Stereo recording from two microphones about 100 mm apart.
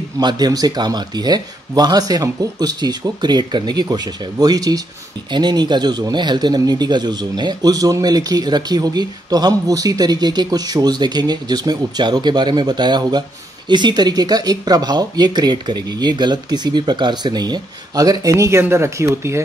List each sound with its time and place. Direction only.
0.2 s speech: 45° right (ahead or behind); by 19.4 s 30° right (ahead or behind)